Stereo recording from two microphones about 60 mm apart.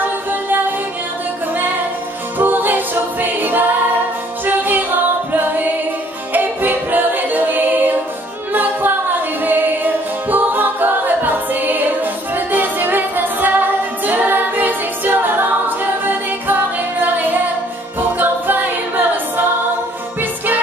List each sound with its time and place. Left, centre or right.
0.0 s music: right
2.3 s music: right
4.5 s a capella: right
6.3 s music: right
8.5 s a capella: right
10.3 s music: right
18.1 s a capella: right
20.2 s music: right